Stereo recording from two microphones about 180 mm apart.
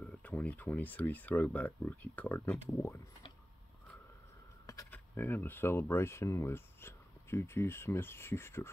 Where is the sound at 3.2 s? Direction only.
25° left (ahead or behind).